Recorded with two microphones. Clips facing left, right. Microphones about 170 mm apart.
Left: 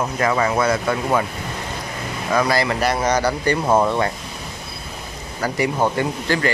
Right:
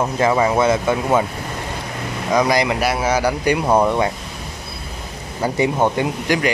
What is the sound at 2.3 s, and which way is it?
Speech, 15° right (ahead or behind).